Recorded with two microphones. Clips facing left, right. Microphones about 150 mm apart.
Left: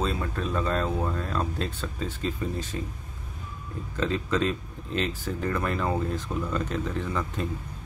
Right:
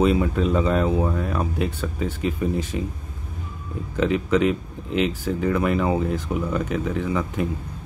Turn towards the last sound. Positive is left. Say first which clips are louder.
# right 6 dB
turn(degrees=-10)  # may be behind; listen again after turning